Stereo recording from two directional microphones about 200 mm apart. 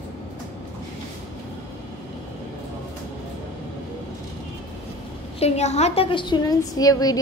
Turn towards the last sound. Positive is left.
turn(degrees=20)  # may be behind; listen again after turning